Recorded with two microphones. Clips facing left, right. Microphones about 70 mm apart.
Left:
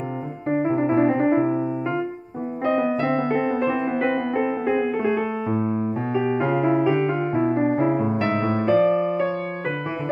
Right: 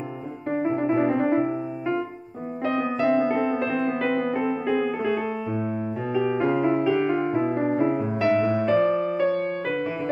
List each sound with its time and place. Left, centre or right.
0.5 s piano: left
2.8 s music: centre
3.1 s music: left
3.3 s music: left
6.4 s music: left
6.8 s music: left